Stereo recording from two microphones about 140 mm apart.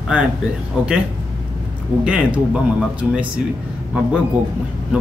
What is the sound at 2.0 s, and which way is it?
Speech, 10° right (ahead or behind).